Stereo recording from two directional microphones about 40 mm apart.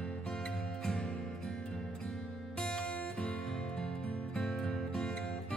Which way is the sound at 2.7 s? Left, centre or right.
Left.